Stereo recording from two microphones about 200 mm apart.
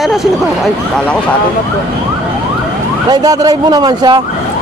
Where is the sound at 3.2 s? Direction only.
20° right (ahead or behind).